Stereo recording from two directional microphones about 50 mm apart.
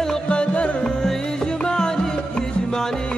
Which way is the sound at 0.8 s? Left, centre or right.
Centre.